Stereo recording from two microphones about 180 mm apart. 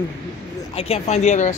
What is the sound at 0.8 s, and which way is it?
Speech, 35° left (ahead or behind).